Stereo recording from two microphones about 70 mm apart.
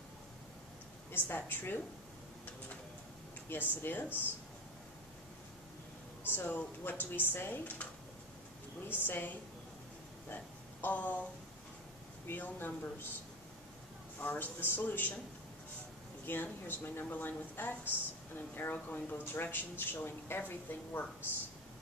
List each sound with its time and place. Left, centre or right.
1.1 s speech: left
3.7 s speech: left
6.2 s speech: left
9.0 s speech: left
10.3 s a sound: left
12.3 s speech: left
14.2 s speech: left
16.3 s speech: left